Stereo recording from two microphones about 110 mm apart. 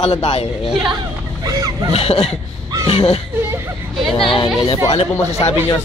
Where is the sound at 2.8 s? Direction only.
45° left (ahead or behind).